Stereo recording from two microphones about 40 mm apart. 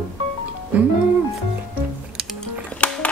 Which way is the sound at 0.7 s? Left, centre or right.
Right.